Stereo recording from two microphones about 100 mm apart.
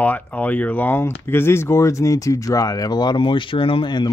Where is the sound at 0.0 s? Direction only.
15° left (ahead or behind).